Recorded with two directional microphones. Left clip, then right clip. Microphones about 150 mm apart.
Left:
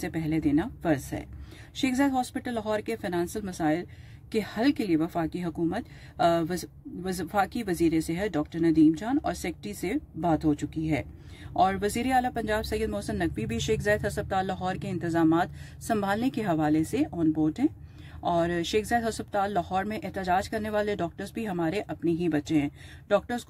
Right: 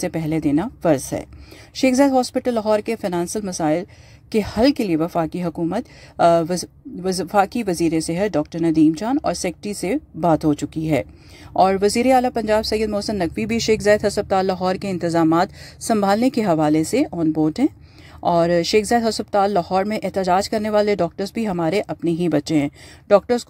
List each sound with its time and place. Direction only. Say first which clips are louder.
0.0 s speech: right 7 dB; 50° right (ahead or behind)